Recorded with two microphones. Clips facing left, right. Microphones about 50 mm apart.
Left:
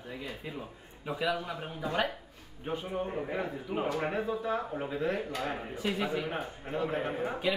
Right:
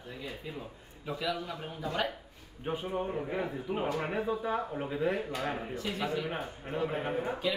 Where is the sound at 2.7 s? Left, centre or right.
Centre.